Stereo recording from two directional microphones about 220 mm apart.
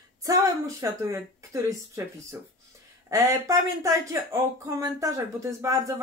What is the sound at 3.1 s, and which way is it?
Speech, 15° right (ahead or behind).